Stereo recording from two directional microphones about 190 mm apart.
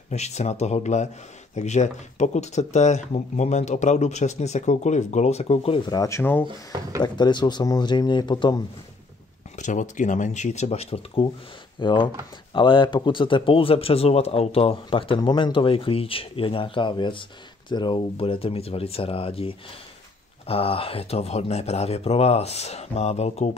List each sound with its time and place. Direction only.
0.1 s speech: 35° left (ahead or behind); by 6.4 s 10° left (ahead or behind)
7.0 s speech: 25° left (ahead or behind)
9.6 s speech: 40° left (ahead or behind)